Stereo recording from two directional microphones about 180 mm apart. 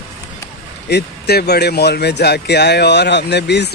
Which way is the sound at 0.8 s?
65° left (ahead or behind).